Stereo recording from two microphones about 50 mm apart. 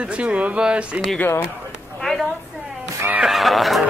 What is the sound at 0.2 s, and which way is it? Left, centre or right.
Speech, right.